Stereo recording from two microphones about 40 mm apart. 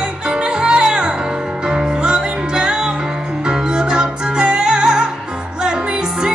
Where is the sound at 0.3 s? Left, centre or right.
Centre.